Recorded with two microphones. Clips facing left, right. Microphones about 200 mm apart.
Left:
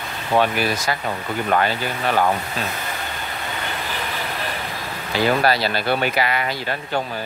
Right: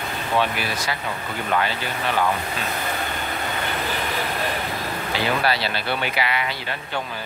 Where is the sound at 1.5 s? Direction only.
45° left (ahead or behind).